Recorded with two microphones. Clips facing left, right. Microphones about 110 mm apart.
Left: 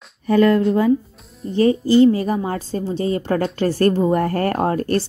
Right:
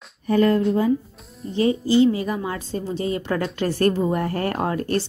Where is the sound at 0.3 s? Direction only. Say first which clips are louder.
Left 3 dB; 80° left.